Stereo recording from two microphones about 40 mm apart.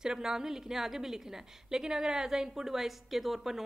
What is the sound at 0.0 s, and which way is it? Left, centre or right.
A woman's voice, centre.